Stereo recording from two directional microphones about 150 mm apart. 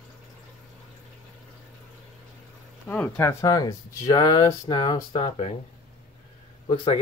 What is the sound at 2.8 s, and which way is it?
Speech, 10° left (ahead or behind).